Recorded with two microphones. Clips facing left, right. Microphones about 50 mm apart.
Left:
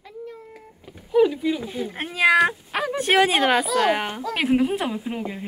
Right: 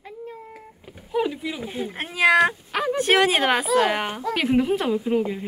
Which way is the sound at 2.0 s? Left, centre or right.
Centre.